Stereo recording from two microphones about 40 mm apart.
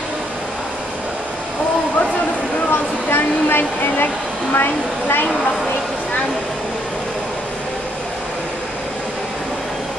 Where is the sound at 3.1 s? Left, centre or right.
Left.